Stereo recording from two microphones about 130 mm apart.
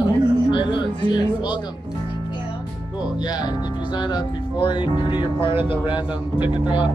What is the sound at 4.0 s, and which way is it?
Speech, 35° left (ahead or behind).